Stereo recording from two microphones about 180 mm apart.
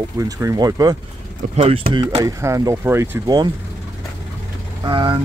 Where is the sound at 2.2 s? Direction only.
20° right (ahead or behind).